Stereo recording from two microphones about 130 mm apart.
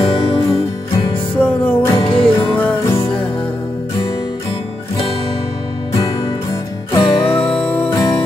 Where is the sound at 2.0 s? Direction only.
45° left (ahead or behind).